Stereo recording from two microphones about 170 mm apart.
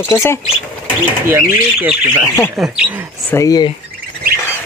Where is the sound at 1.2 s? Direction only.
15° right (ahead or behind).